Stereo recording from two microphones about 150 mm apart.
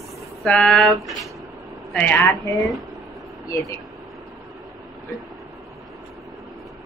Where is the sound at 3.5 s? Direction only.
20° left (ahead or behind).